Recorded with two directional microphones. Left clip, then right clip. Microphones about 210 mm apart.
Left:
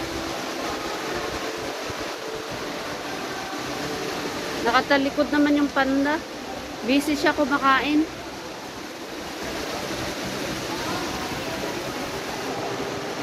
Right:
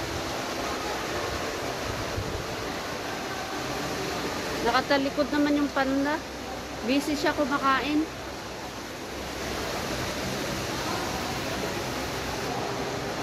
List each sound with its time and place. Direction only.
4.6 s speech: centre (ahead or behind)